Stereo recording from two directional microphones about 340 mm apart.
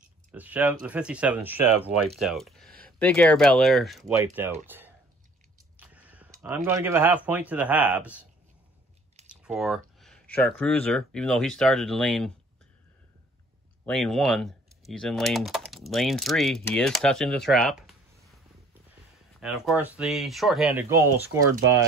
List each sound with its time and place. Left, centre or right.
0.3 s speech: centre
5.8 s a sound: centre
6.4 s speech: centre
9.3 s a sound: centre
10.6 s speech: centre
13.8 s speech: centre
19.4 s speech: centre